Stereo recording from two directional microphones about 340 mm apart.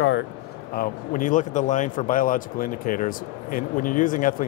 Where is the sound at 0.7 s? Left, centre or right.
Left.